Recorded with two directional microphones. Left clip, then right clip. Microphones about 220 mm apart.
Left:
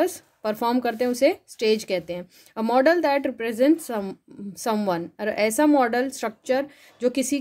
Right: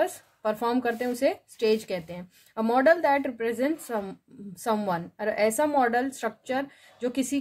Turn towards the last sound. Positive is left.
turn(degrees=45)  # may be behind; listen again after turning